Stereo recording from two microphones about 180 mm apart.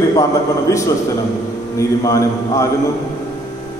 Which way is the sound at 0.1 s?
20° left (ahead or behind).